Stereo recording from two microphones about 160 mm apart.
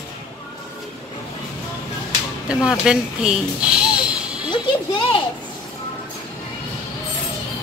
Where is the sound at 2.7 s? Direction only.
5° right (ahead or behind).